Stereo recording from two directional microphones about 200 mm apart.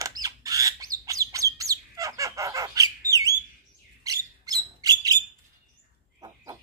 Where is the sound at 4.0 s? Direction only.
20° right (ahead or behind).